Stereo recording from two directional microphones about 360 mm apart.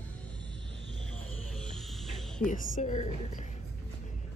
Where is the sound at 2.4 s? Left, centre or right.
Left.